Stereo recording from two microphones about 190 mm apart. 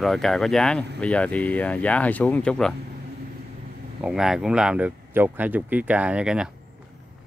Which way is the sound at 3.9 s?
5° right (ahead or behind).